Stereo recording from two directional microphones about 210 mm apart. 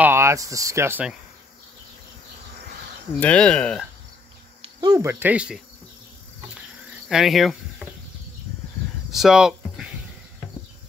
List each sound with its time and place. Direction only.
0.0 s speech: 10° right (ahead or behind)
3.2 s speech: 5° left (ahead or behind)
4.6 s speech: 20° right (ahead or behind); by 5.6 s 5° right (ahead or behind)
6.5 s cricket: 5° right (ahead or behind)
9.1 s speech: centre (ahead or behind)